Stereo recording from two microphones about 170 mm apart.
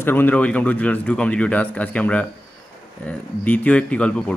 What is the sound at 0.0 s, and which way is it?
Speech, 10° left (ahead or behind).